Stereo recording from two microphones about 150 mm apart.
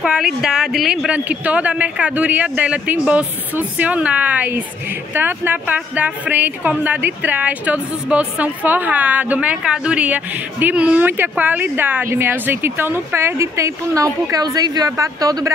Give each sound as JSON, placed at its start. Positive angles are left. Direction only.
{"t": 0.0, "sound": "a woman's voice", "side_deg": -5}